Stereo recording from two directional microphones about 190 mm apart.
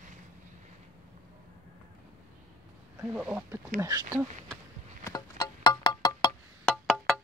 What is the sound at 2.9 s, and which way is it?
Speech, 10° right (ahead or behind).